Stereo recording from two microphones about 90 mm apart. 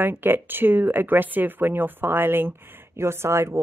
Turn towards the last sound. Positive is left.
turn(degrees=-30)  # may be behind; listen again after turning